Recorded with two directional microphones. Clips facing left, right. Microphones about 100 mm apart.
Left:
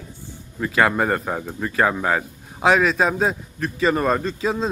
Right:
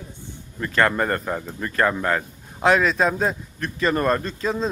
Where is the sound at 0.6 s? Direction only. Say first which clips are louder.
Left 1 dB; 5° left (ahead or behind).